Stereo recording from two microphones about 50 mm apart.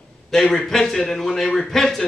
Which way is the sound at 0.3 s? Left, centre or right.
Centre.